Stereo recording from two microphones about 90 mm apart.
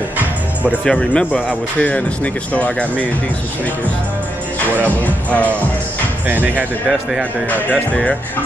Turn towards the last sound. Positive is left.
turn(degrees=20)  # may be behind; listen again after turning